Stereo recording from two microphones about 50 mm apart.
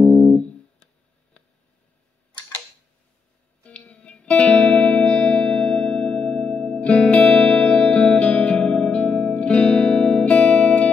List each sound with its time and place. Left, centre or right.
0.0 s music: left
3.6 s music: left